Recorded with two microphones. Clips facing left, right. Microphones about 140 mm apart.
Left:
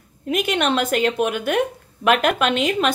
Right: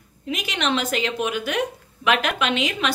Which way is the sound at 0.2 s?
55° left (ahead or behind).